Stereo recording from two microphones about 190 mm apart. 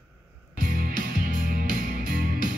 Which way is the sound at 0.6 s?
45° right (ahead or behind).